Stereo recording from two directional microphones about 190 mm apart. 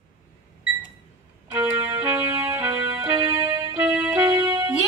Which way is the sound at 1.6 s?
15° right (ahead or behind).